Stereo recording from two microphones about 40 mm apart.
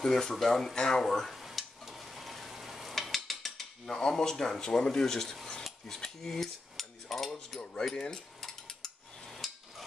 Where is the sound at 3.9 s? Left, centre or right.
Centre.